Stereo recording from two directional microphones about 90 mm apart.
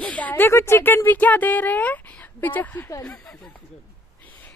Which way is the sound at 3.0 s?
10° left (ahead or behind).